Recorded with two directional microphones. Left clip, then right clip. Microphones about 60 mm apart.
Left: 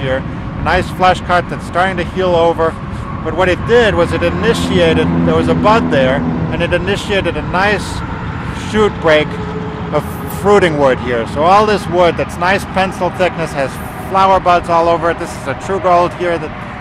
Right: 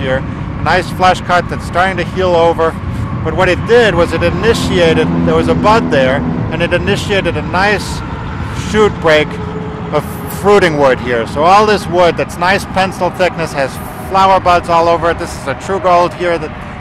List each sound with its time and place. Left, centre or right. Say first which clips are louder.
0.7 s speech: right 1 dB; right